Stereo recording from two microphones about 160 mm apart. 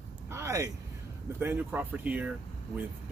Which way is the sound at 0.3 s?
20° right (ahead or behind).